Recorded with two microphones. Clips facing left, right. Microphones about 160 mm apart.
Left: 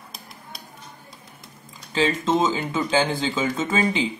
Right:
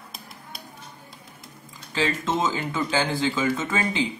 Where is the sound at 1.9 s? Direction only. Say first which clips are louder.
Left 4 dB; 20° left (ahead or behind).